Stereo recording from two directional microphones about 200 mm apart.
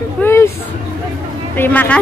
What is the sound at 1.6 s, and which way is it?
Speech, 10° left (ahead or behind).